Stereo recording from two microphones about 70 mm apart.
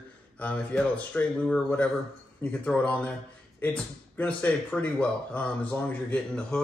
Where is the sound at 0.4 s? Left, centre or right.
Left.